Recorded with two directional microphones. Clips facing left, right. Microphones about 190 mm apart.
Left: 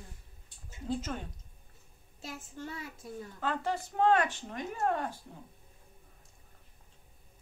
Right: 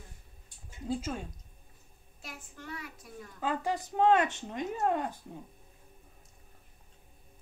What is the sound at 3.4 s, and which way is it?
Speech, 15° right (ahead or behind).